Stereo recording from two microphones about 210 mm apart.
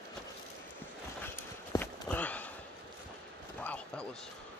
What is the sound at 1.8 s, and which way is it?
Walk, 5° left (ahead or behind).